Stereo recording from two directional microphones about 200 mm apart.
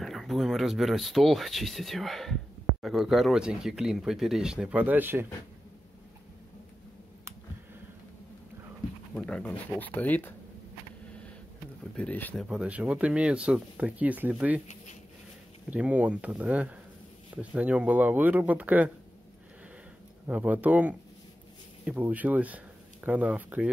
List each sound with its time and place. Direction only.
0.0 s speech: centre (ahead or behind)
9.1 s speech: 5° left (ahead or behind)
12.0 s speech: 10° left (ahead or behind)
12.4 s speech: 5° right (ahead or behind)
15.7 s speech: 5° right (ahead or behind)
20.2 s speech: 10° right (ahead or behind)